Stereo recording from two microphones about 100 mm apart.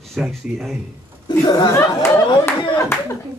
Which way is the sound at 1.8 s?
25° left (ahead or behind).